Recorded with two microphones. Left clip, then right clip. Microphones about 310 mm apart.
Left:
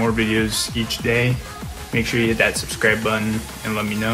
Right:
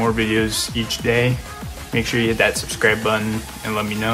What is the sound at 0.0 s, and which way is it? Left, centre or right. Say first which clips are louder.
Speech: right 1 dB; centre.